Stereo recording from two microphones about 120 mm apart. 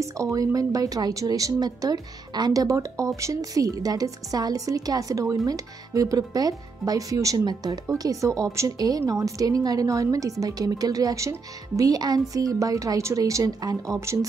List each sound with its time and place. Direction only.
0.0 s a woman's voice: 25° right (ahead or behind)